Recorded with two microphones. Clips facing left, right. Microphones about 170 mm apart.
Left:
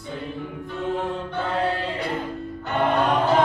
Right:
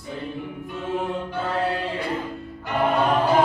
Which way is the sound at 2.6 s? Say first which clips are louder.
Even; 10° right (ahead or behind).